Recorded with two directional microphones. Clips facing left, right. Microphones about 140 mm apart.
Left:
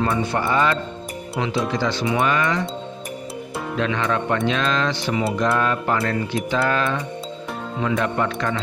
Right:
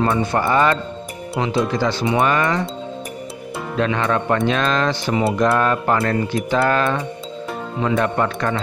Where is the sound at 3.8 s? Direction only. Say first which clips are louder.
Right 3 dB; 45° right (ahead or behind).